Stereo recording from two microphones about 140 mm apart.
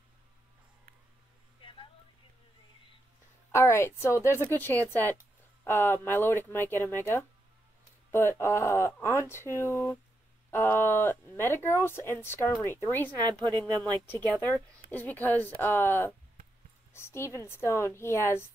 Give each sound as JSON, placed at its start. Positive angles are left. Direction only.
{"t": 1.6, "sound": "a sound", "side_deg": 40}
{"t": 3.5, "sound": "a woman's voice", "side_deg": 20}
{"t": 13.3, "sound": "a woman's voice", "side_deg": -30}
{"t": 14.0, "sound": "a woman's voice", "side_deg": 15}